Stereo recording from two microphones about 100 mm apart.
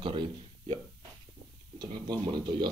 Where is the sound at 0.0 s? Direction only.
60° right (ahead or behind).